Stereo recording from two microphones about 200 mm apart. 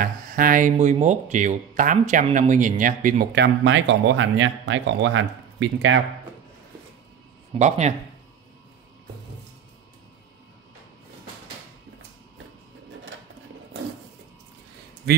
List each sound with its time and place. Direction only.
0.0 s speech: 45° right (ahead or behind); by 6.0 s 70° right (ahead or behind)
7.5 s speech: 35° right (ahead or behind)
15.1 s speech: 55° right (ahead or behind)